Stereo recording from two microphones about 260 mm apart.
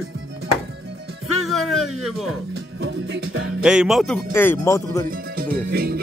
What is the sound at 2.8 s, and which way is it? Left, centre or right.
Music, right.